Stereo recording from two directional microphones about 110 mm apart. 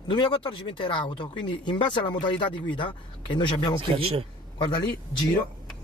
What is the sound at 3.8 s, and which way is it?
Speech, 55° right (ahead or behind).